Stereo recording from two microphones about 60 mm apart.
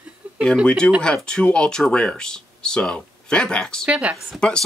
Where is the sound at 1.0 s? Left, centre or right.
Centre.